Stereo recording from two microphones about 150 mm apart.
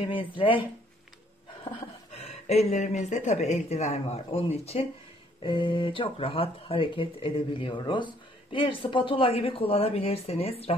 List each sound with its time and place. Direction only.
0.0 s speech: 35° left (ahead or behind)
2.1 s a woman's voice: 45° left (ahead or behind)